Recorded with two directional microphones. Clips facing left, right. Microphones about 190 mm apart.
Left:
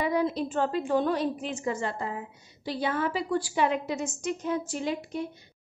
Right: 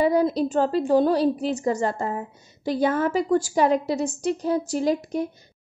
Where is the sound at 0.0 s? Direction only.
35° right (ahead or behind).